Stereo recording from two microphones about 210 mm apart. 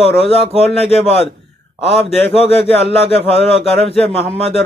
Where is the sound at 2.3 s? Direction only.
30° left (ahead or behind).